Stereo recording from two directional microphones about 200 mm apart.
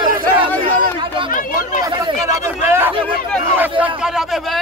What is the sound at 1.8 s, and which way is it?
Chatter, 20° right (ahead or behind).